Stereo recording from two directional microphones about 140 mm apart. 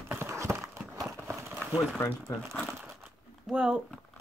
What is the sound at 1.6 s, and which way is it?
Speech, centre (ahead or behind).